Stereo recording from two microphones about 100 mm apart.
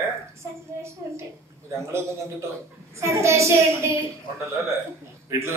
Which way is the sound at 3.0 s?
30° right (ahead or behind).